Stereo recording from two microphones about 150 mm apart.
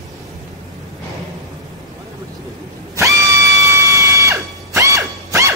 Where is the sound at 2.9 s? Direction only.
20° right (ahead or behind).